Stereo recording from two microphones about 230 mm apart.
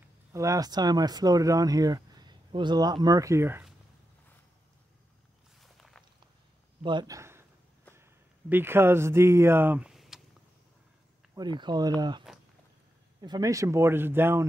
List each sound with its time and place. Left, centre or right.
0.3 s speech: centre
5.6 s walk: centre
6.8 s a man's voice: centre
11.3 s speech: centre
12.3 s walk: centre
13.2 s speech: centre